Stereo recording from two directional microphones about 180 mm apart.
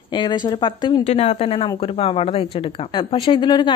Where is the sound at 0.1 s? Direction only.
25° left (ahead or behind).